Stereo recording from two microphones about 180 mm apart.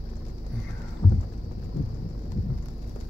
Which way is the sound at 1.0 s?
15° left (ahead or behind).